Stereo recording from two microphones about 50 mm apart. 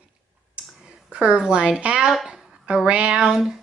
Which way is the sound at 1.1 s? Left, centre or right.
Centre.